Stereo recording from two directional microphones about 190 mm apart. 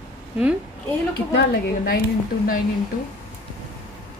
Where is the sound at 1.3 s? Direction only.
55° left (ahead or behind).